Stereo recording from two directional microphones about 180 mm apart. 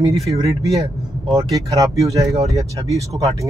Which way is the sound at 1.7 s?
20° right (ahead or behind).